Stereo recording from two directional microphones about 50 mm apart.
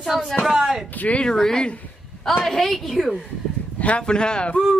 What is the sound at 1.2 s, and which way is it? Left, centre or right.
A man's voice, centre.